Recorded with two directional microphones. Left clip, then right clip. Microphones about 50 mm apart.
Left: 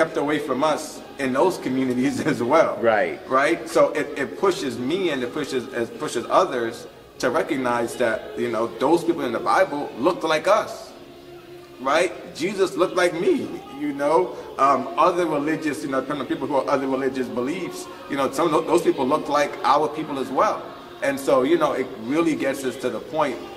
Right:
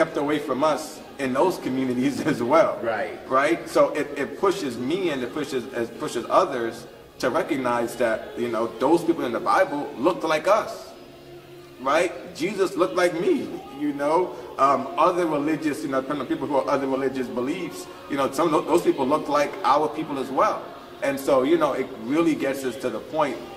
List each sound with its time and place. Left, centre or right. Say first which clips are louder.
0.0 s a man's voice: left 1 dB; left
2.8 s a man's voice: left 7 dB; centre
3.3 s a man's voice: right 2 dB; left
11.8 s a man's voice: left 1 dB; left